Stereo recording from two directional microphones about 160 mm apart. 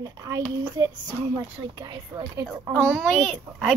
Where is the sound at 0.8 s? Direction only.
20° right (ahead or behind).